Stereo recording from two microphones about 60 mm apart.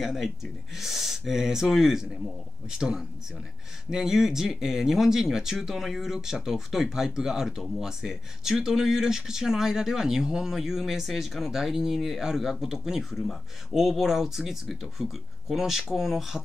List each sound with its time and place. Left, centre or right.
0.0 s a man's voice: centre